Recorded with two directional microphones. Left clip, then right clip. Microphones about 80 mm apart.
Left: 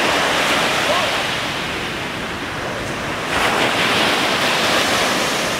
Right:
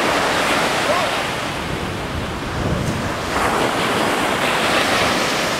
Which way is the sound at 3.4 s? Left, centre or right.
Left.